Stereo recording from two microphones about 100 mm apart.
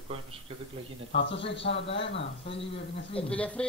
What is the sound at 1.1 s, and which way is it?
Speech, 75° left (ahead or behind).